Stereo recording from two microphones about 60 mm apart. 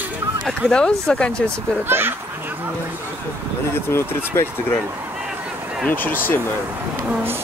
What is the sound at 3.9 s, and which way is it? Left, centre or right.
Speech, left.